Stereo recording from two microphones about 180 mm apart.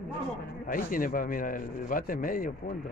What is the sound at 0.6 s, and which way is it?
A man's voice, 50° left (ahead or behind).